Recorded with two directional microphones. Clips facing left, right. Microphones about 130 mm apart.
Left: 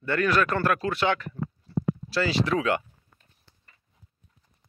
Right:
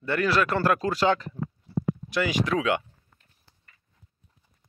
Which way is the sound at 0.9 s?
35° right (ahead or behind).